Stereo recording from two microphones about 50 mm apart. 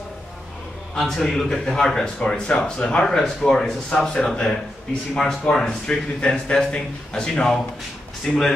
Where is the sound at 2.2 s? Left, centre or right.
Left.